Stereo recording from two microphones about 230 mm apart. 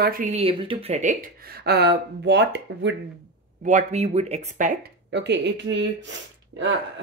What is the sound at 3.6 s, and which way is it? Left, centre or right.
Speech, right.